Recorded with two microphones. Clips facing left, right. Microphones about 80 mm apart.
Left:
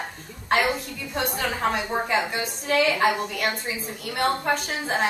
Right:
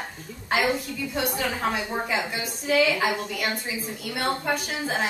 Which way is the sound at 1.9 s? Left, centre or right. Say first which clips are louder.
Left 3 dB; centre.